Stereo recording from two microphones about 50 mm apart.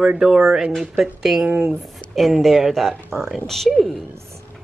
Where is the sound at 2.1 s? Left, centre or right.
Centre.